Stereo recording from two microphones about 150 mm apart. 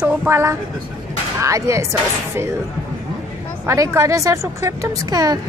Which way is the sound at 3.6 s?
20° right (ahead or behind).